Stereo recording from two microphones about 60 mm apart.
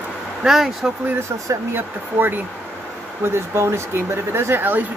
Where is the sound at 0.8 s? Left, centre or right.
Centre.